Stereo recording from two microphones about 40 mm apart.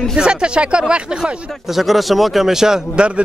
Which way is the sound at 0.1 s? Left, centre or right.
Right.